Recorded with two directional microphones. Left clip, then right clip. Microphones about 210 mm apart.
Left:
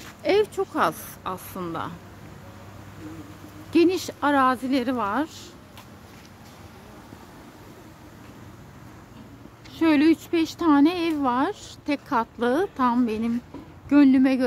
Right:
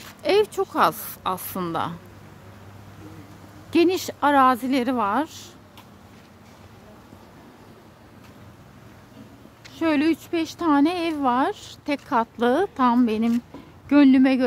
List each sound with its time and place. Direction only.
0.2 s speech: 25° right (ahead or behind)
3.7 s speech: 30° right (ahead or behind)
9.8 s speech: 10° right (ahead or behind); by 14.4 s 25° right (ahead or behind)